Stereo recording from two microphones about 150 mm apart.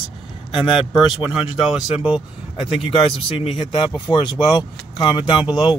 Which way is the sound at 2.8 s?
40° left (ahead or behind).